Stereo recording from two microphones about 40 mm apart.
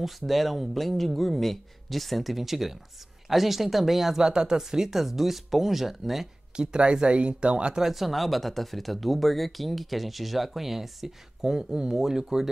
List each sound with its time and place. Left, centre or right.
0.0 s speech: centre
4.2 s speech: centre
6.5 s speech: right
7.8 s speech: centre